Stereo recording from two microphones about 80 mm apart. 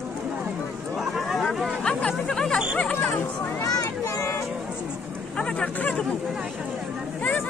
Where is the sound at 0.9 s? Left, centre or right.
Centre.